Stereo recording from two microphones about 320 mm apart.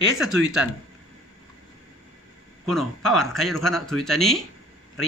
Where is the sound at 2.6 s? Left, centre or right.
Centre.